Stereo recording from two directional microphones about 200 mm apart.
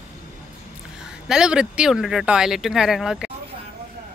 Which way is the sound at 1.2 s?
5° right (ahead or behind).